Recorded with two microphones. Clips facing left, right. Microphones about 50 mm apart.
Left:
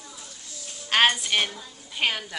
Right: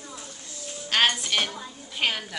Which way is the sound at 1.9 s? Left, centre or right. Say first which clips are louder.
Left 1 dB; centre.